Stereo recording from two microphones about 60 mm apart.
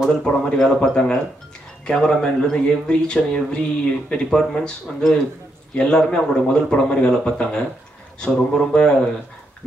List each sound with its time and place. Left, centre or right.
0.2 s a man's voice: centre